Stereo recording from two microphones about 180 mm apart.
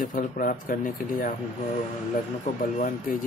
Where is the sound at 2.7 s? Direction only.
50° left (ahead or behind).